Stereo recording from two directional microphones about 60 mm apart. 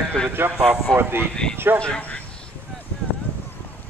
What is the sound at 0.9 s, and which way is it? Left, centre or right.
Speech, right.